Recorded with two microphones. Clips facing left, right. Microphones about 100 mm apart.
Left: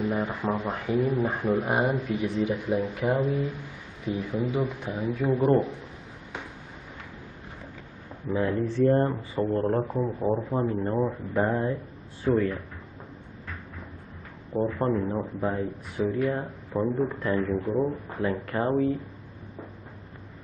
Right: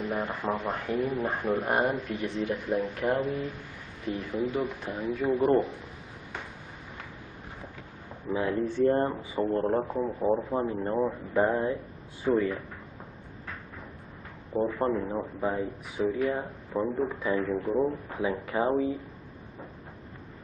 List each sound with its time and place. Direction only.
0.0 s a man's voice: 5° left (ahead or behind)
4.9 s a man's voice: 5° left (ahead or behind)
8.3 s a man's voice: 5° right (ahead or behind)
14.5 s a man's voice: centre (ahead or behind)